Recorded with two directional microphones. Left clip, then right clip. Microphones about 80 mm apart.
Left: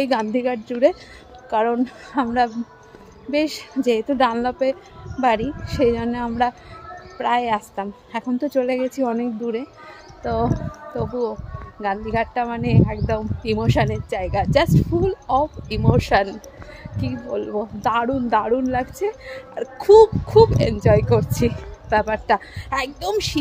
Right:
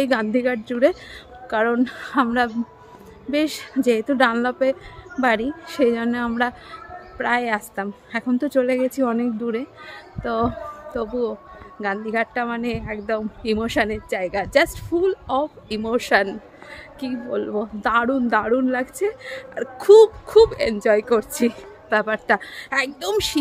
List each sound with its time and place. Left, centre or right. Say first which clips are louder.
0.0 s a woman's voice: even; right
1.8 s a woman's voice: right 2 dB; right
11.0 s a woman's voice: even; right